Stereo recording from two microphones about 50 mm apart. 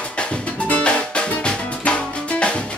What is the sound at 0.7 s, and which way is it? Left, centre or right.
Music, left.